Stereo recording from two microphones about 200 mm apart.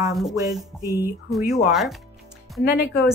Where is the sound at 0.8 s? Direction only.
15° left (ahead or behind).